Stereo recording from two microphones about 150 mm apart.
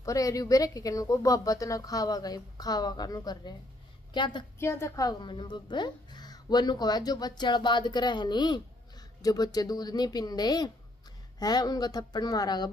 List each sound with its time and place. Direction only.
0.0 s a woman's voice: 20° left (ahead or behind)
4.6 s a woman's voice: 15° left (ahead or behind)